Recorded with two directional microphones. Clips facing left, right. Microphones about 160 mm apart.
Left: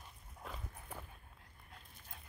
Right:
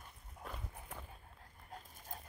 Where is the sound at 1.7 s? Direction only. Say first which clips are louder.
Right 8 dB; 40° right (ahead or behind).